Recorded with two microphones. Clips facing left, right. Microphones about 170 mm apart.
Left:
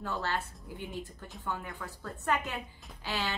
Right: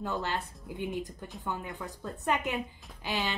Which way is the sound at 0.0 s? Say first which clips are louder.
Right 1 dB; 15° right (ahead or behind).